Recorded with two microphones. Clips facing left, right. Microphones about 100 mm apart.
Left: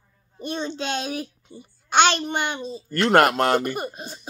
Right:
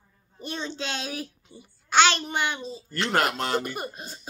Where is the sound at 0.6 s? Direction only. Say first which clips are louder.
Left 5 dB; 50° left (ahead or behind).